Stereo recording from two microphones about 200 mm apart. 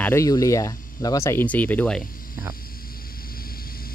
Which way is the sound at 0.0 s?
15° left (ahead or behind).